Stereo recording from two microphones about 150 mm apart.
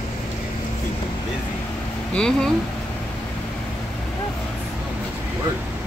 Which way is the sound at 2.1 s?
5° left (ahead or behind).